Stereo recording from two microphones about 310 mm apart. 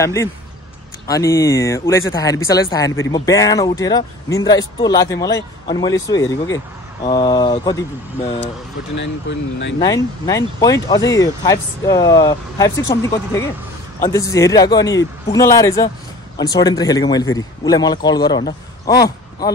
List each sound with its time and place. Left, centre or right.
0.0 s speech: centre
8.9 s speech: left
9.8 s speech: centre